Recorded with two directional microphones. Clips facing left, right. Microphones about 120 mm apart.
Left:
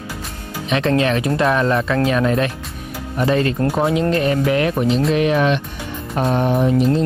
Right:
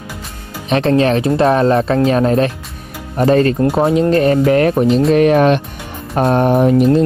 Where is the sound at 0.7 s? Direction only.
35° right (ahead or behind).